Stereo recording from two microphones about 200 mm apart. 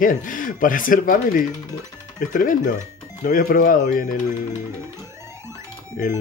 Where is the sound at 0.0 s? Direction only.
40° left (ahead or behind).